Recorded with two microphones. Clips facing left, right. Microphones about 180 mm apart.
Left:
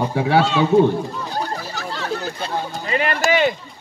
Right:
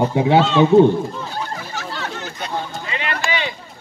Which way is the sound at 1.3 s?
40° left (ahead or behind).